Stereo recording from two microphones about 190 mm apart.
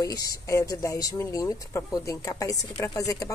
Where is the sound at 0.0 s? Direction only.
20° left (ahead or behind).